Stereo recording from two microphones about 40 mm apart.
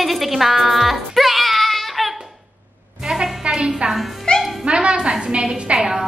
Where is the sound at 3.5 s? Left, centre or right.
Right.